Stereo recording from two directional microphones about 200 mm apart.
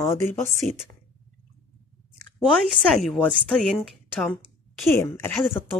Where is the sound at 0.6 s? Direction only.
40° left (ahead or behind).